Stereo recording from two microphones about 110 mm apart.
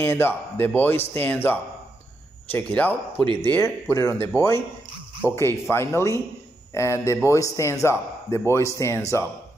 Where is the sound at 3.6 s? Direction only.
25° left (ahead or behind).